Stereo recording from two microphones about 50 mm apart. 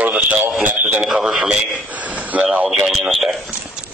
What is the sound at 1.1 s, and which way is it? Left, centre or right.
Speech, centre.